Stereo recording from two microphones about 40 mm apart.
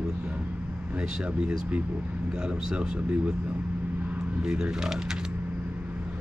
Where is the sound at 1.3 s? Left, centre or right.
Right.